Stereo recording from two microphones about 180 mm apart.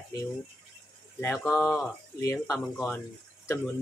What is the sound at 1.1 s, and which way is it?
Speech, 10° left (ahead or behind).